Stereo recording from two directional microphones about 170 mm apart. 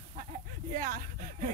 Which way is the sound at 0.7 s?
50° right (ahead or behind).